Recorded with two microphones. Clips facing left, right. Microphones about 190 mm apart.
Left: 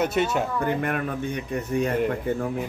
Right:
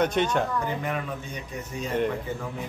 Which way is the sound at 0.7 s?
60° left (ahead or behind).